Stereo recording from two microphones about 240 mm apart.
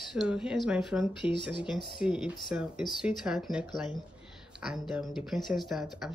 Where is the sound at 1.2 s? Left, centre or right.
Left.